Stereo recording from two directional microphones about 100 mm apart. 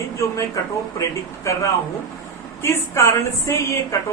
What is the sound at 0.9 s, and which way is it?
A woman's voice, 30° left (ahead or behind).